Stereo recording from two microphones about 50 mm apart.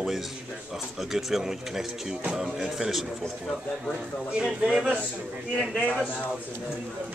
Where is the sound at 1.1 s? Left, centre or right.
Centre.